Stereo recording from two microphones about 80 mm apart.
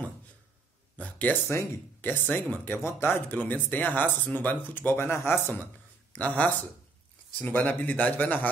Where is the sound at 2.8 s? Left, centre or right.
Left.